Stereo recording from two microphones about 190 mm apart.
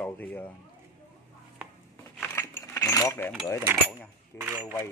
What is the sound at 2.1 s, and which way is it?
Keys jangling, 10° left (ahead or behind).